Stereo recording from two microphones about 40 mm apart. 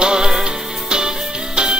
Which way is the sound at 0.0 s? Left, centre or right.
Centre.